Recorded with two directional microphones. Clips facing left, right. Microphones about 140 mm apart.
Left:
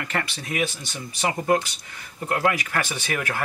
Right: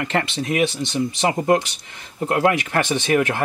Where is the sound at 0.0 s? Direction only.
25° right (ahead or behind).